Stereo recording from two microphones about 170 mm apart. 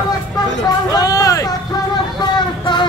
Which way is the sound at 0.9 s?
20° left (ahead or behind).